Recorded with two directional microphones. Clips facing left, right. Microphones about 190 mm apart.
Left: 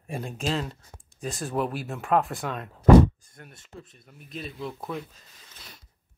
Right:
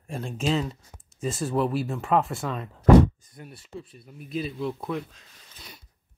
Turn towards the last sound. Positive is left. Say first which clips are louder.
# right 3 dB
turn(degrees=0)  # may be behind; listen again after turning